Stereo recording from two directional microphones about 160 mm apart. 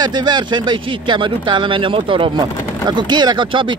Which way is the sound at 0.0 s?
25° right (ahead or behind).